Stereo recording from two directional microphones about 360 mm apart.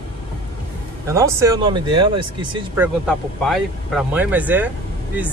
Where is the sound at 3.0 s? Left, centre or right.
Centre.